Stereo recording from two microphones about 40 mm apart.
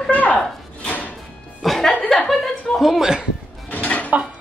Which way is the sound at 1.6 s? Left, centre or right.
Centre.